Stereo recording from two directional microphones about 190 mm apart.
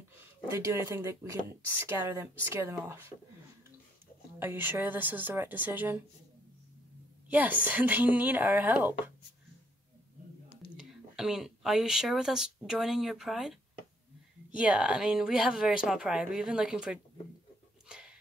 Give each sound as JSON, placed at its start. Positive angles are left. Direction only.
{"t": 0.5, "sound": "a woman's voice", "side_deg": -15}
{"t": 4.4, "sound": "a woman's voice", "side_deg": -10}
{"t": 7.2, "sound": "a woman's voice", "side_deg": -10}
{"t": 10.8, "sound": "speech", "side_deg": -5}
{"t": 17.8, "sound": "a sound", "side_deg": -5}